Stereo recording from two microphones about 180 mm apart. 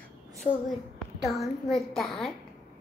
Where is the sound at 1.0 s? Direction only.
Centre (ahead or behind).